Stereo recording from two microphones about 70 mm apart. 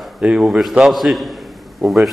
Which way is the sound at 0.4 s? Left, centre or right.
Centre.